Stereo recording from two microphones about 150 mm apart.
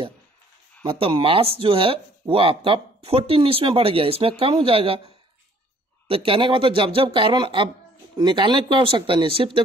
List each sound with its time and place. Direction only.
0.8 s speech: 35° right (ahead or behind)